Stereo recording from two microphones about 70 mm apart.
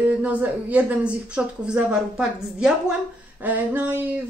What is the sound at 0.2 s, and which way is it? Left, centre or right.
Speech, right.